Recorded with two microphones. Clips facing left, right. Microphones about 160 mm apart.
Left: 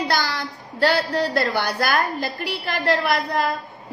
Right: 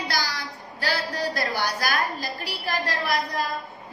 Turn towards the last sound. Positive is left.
turn(degrees=60)  # may be behind; listen again after turning